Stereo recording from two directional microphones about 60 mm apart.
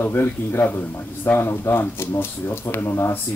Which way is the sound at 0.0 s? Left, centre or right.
Left.